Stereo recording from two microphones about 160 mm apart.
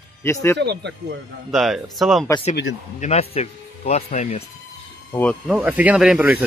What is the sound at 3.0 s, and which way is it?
Speech, 40° left (ahead or behind).